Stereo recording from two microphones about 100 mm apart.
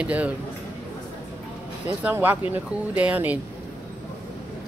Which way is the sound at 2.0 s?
20° right (ahead or behind).